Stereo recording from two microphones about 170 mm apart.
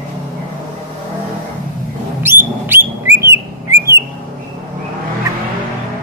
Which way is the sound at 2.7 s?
15° right (ahead or behind).